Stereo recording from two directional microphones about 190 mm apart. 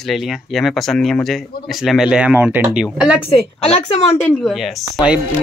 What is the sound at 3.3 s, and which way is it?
Speech, 35° left (ahead or behind).